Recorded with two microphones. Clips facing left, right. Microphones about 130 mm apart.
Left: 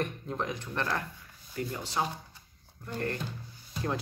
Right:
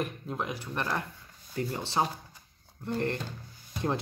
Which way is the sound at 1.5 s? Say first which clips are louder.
Right 3 dB; 30° right (ahead or behind).